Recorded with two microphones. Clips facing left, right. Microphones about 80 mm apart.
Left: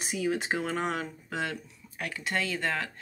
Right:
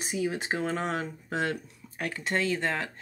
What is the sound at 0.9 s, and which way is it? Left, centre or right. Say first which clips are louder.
Speech: right 2 dB; right.